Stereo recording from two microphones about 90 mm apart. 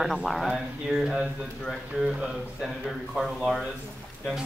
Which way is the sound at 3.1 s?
Centre (ahead or behind).